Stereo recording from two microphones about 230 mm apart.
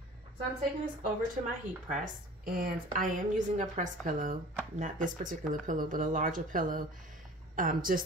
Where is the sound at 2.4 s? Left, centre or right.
Right.